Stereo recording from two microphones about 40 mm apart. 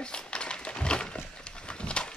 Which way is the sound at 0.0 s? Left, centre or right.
Left.